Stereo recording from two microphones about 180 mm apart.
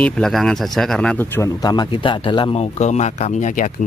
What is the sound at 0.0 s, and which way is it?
Speech, 5° left (ahead or behind).